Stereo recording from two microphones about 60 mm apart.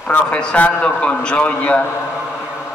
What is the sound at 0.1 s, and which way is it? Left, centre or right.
A man's voice, left.